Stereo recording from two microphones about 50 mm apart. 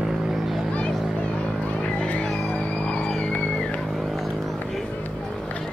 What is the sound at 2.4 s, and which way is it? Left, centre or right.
Vehicle, left.